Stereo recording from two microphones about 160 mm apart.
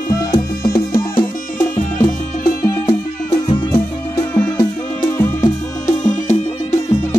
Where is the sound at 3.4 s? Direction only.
20° left (ahead or behind).